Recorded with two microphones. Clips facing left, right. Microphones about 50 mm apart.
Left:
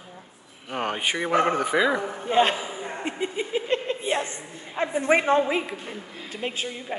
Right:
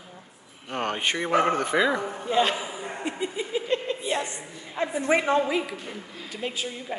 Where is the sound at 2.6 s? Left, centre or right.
Centre.